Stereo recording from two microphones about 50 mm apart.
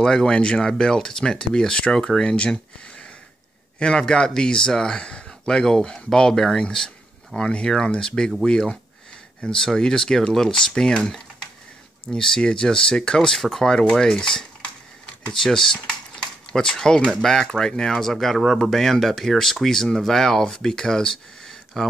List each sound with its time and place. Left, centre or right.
0.0 s speech: centre
12.1 s speech: centre